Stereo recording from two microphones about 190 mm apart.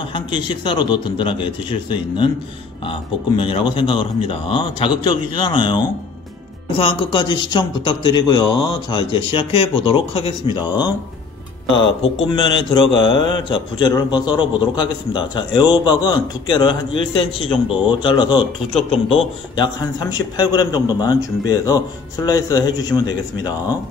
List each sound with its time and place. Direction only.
0.1 s speech: 25° left (ahead or behind)
6.8 s speech: 25° left (ahead or behind)